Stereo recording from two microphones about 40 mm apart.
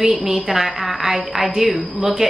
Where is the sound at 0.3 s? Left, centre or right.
Centre.